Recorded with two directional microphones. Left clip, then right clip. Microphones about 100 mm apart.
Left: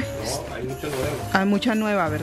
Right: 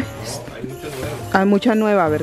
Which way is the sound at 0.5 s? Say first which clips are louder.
Left 1 dB; 30° left (ahead or behind).